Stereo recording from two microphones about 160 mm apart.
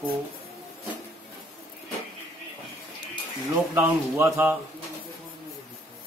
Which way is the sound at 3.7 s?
15° right (ahead or behind).